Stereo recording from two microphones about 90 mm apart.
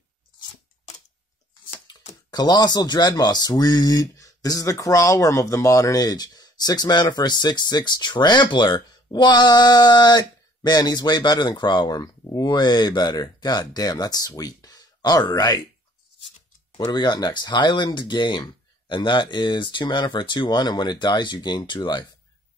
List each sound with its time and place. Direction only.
1.9 s speech: 50° left (ahead or behind)
16.7 s speech: 55° left (ahead or behind)